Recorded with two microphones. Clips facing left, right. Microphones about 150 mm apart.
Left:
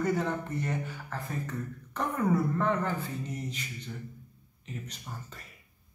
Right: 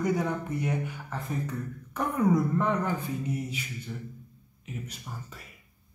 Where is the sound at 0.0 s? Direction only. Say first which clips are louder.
Right 1 dB; 10° right (ahead or behind).